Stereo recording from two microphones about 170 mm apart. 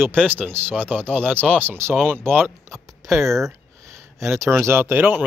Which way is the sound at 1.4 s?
5° left (ahead or behind).